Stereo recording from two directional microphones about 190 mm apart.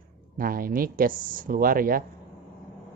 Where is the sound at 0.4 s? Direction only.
50° right (ahead or behind).